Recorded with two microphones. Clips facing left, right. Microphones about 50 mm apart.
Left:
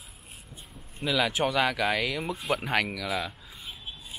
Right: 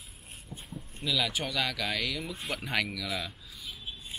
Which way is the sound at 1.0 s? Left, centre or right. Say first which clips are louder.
Left 5 dB; left.